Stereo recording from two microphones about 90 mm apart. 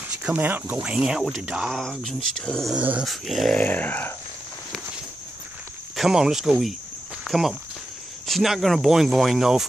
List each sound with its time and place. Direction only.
0.2 s speech: 20° right (ahead or behind)
0.8 s speech: 10° right (ahead or behind)
1.8 s speech: 5° left (ahead or behind)
2.7 s speech: 15° right (ahead or behind)
3.0 s speech: centre (ahead or behind)
3.5 s speech: 20° left (ahead or behind)
5.9 s speech: 5° right (ahead or behind)